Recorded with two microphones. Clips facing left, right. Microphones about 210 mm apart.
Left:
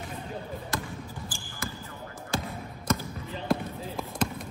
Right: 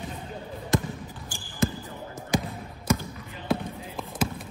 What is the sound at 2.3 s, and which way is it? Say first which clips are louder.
Basketball bounce: right 5 dB; 15° right (ahead or behind).